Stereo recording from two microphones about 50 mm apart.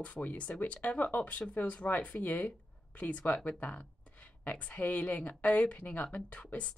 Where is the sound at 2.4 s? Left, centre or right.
Left.